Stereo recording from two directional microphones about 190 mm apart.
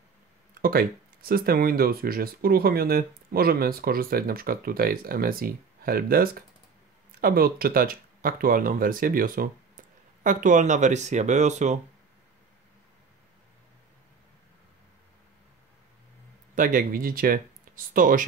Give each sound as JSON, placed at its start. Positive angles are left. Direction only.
{"t": 0.6, "sound": "speech", "side_deg": -50}
{"t": 16.5, "sound": "speech", "side_deg": -45}